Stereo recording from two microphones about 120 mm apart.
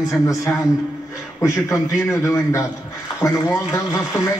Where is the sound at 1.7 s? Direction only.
25° left (ahead or behind).